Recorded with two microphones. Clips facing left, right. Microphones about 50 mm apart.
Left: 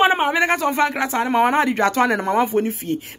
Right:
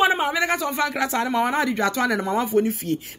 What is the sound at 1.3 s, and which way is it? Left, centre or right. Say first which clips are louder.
Speech: left 5 dB; left.